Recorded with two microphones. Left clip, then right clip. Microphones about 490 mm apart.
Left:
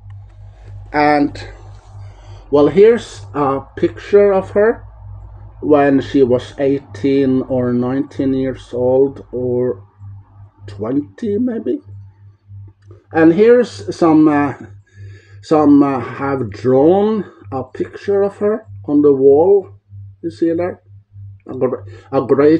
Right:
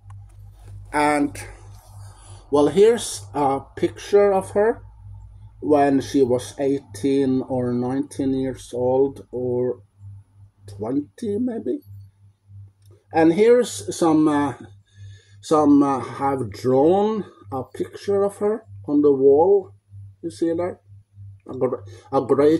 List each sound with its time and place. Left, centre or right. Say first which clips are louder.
0.8 s speech: left 7 dB; right
13.2 s speech: left 6 dB; right